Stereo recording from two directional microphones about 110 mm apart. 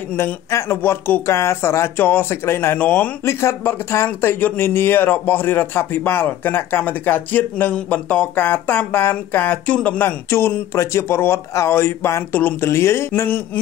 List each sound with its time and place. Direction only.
0.1 s speech: 25° left (ahead or behind)